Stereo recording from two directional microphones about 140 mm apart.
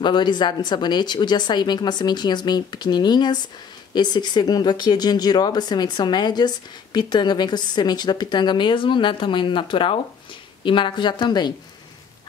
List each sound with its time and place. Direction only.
0.0 s speech: 30° left (ahead or behind)